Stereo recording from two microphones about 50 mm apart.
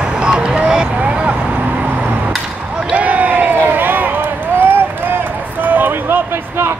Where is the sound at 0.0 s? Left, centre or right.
Centre.